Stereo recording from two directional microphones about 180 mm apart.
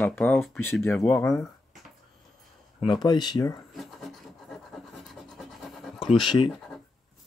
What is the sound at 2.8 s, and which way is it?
Speech, 25° left (ahead or behind).